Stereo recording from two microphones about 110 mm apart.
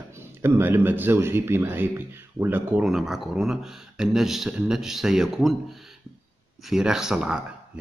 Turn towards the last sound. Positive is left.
turn(degrees=-5)  # may be behind; listen again after turning